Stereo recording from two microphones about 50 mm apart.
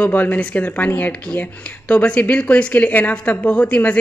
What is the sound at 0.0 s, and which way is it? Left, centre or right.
Speech, left.